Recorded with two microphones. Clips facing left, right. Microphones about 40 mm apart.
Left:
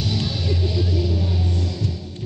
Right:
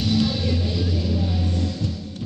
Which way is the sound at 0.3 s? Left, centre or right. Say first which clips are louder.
Even; centre.